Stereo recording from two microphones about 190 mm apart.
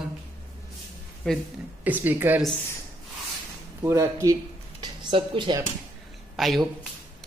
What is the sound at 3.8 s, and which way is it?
Speech, 15° right (ahead or behind).